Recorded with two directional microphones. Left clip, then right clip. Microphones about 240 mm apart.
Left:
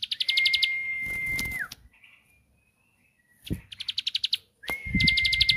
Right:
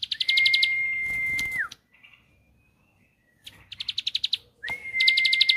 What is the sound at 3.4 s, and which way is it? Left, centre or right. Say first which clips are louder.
Bird: right 1 dB; centre.